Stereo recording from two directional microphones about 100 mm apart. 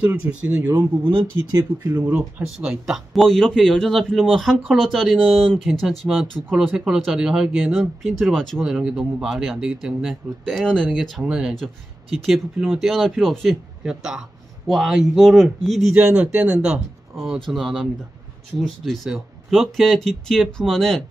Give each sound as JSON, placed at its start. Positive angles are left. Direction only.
{"t": 0.0, "sound": "speech", "side_deg": -20}
{"t": 1.5, "sound": "speech", "side_deg": -35}
{"t": 2.0, "sound": "speech", "side_deg": -15}
{"t": 10.6, "sound": "speech", "side_deg": 5}
{"t": 11.0, "sound": "speech", "side_deg": -5}
{"t": 19.0, "sound": "speech", "side_deg": 0}